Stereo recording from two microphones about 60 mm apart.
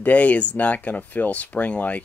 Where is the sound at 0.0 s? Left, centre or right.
Left.